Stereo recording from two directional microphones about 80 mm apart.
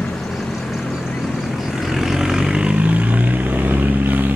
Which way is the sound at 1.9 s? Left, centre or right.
Centre.